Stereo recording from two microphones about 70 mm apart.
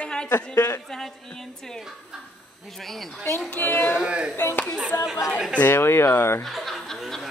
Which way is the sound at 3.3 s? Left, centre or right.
Left.